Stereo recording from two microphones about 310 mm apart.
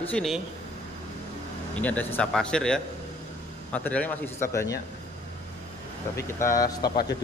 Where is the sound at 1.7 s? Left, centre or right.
Centre.